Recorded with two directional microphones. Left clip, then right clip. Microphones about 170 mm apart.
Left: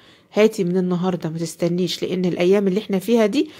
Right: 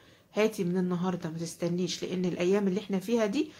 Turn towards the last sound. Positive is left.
turn(degrees=50)  # may be behind; listen again after turning